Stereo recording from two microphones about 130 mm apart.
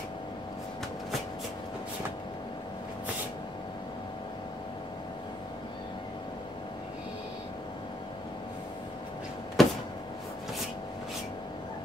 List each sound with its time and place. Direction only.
9.6 s power windows: centre (ahead or behind)